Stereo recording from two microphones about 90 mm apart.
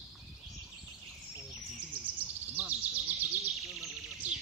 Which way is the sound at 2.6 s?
15° right (ahead or behind).